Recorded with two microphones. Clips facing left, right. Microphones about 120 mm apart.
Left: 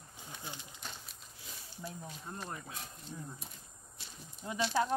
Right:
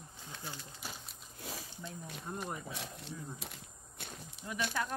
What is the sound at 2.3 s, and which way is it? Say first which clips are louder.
Speech: right 4 dB; 10° right (ahead or behind).